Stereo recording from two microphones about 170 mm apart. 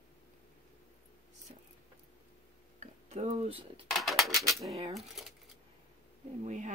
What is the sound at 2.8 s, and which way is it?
Speech, 40° right (ahead or behind).